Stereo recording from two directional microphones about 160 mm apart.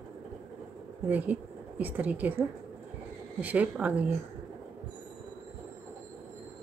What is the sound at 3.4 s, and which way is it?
Speech, 10° right (ahead or behind).